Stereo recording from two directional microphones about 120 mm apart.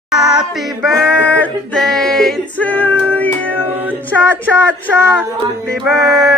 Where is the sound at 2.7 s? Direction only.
15° left (ahead or behind).